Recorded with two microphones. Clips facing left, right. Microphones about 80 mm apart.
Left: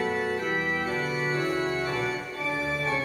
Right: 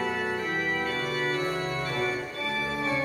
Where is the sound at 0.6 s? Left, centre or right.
Left.